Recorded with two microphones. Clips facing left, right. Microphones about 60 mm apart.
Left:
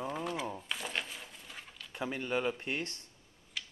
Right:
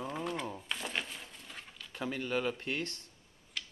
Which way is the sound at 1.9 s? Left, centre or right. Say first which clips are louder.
Even; centre.